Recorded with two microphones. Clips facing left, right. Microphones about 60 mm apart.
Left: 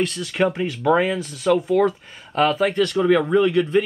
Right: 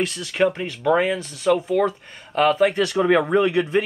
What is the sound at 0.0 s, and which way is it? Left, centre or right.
Speech, centre.